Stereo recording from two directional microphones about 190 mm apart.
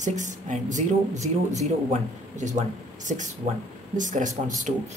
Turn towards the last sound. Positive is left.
turn(degrees=-40)  # may be behind; listen again after turning